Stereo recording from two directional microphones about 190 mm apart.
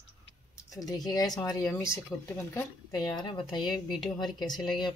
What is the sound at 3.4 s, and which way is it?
Speech, centre (ahead or behind).